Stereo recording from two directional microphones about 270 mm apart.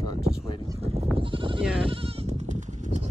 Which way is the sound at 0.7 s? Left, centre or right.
Right.